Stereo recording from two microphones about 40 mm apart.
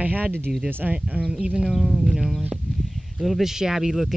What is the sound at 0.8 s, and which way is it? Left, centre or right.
Speech, right.